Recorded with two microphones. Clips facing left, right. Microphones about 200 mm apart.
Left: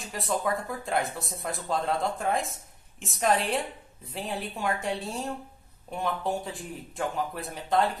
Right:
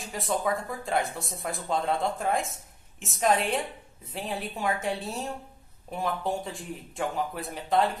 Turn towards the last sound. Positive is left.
turn(degrees=0)  # may be behind; listen again after turning